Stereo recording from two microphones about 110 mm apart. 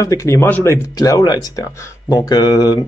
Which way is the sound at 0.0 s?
30° left (ahead or behind).